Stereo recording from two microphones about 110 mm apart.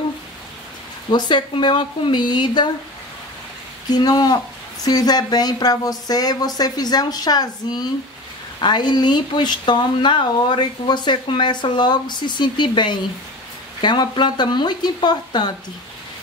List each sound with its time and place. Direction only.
1.1 s speech: 45° left (ahead or behind)
3.9 s speech: 35° left (ahead or behind)